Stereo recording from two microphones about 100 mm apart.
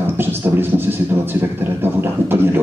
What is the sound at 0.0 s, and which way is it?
A man's voice, 20° right (ahead or behind).